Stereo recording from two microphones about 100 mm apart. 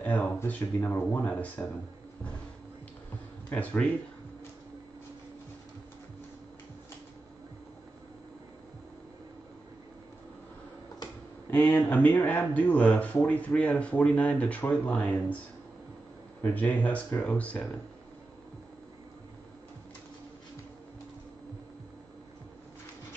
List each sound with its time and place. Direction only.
0.0 s speech: 15° left (ahead or behind)
3.4 s speech: 15° left (ahead or behind)
11.7 s speech: 15° left (ahead or behind)
16.4 s speech: 15° left (ahead or behind)